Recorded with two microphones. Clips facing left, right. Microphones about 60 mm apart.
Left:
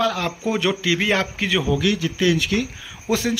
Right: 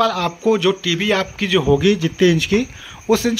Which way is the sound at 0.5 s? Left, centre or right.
Centre.